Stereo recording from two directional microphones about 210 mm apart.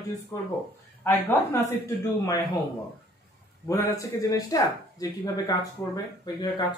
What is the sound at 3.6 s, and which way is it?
Speech, 15° left (ahead or behind).